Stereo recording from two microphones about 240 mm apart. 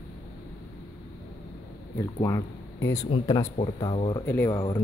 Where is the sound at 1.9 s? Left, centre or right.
Centre.